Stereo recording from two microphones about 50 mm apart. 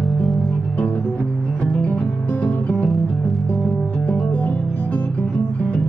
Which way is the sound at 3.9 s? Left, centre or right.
Left.